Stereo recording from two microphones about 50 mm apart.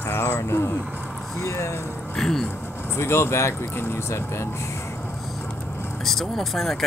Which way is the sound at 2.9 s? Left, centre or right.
Left.